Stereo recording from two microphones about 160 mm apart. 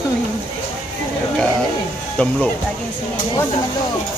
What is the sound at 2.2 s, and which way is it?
Speech, 5° left (ahead or behind).